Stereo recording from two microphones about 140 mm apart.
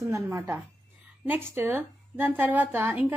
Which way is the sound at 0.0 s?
20° right (ahead or behind).